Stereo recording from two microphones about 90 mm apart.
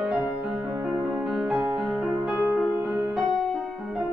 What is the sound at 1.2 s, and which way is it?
Music, 5° right (ahead or behind).